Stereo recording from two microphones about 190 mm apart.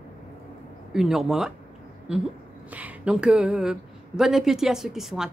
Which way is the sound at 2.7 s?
5° right (ahead or behind).